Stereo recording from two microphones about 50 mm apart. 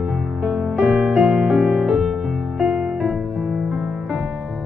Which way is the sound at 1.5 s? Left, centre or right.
Centre.